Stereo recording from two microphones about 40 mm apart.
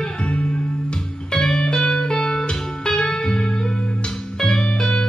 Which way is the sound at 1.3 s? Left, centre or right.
Left.